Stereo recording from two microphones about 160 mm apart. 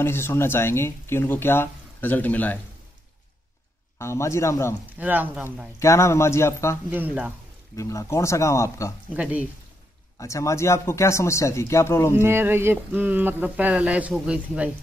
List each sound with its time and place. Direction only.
0.0 s speech: 15° left (ahead or behind)
4.0 s speech: 15° left (ahead or behind)
4.9 s speech: 10° right (ahead or behind)
5.8 s speech: 20° left (ahead or behind)
6.9 s speech: 10° right (ahead or behind)
7.7 s speech: 20° left (ahead or behind)
9.1 s speech: 10° right (ahead or behind)
10.1 s speech: 20° left (ahead or behind)
12.2 s speech: 15° right (ahead or behind)